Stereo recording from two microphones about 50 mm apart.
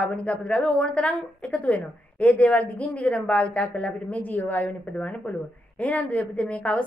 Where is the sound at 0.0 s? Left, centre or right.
Left.